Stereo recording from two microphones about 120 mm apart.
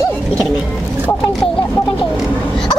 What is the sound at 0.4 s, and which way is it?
Speech, 5° right (ahead or behind).